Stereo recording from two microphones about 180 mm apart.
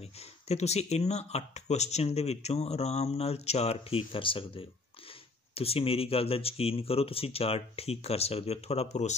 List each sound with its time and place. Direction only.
0.0 s speech: 35° left (ahead or behind)